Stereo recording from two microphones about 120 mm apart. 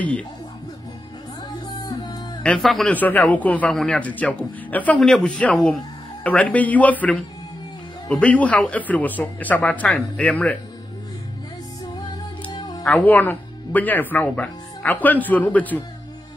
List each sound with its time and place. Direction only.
1.8 s music: 40° left (ahead or behind)
2.4 s speech: 5° left (ahead or behind)
2.9 s speech: 15° left (ahead or behind)
12.4 s music: 35° left (ahead or behind)
12.8 s speech: 10° left (ahead or behind)